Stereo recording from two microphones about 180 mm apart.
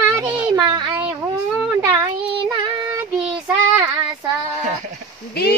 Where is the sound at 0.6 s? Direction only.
25° right (ahead or behind).